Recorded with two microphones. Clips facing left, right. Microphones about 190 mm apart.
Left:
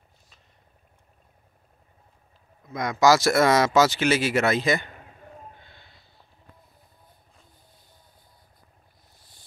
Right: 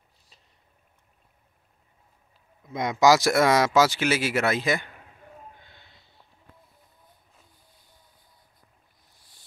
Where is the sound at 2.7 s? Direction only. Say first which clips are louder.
Even; 20° right (ahead or behind).